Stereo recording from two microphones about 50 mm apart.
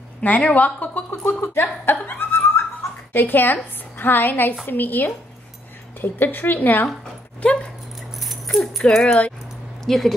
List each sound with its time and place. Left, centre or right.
0.4 s speech: left
0.7 s a woman's voice: left
1.4 s a woman's voice: left
8.2 s dog: centre
8.9 s speech: centre
9.8 s speech: centre